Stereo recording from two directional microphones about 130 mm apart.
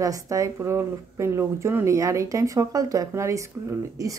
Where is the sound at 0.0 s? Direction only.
25° right (ahead or behind).